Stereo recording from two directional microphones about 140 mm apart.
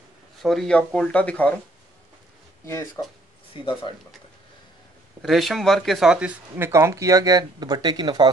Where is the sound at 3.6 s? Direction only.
35° left (ahead or behind).